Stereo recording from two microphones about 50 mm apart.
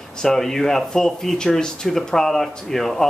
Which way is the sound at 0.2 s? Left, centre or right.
Centre.